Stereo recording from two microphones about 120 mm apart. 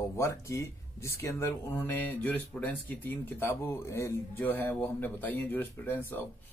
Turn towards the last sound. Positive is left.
turn(degrees=15)  # may be behind; listen again after turning